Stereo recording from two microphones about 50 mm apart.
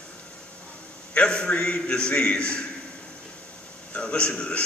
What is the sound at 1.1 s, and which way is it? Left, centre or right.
Speech, centre.